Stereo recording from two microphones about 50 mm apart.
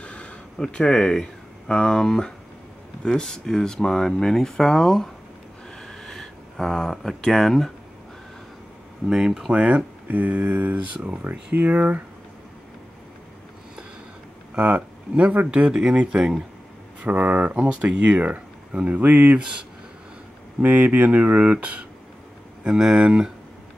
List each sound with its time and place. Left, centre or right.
0.0 s a sound: left
0.6 s speech: centre
5.8 s a sound: centre
7.2 s speech: centre
9.1 s speech: centre
9.5 s speech: right
14.5 s speech: right
17.0 s speech: right
20.6 s speech: right
22.8 s speech: centre